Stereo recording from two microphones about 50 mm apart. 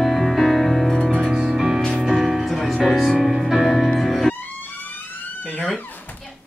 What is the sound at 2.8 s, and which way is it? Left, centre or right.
Speech, centre.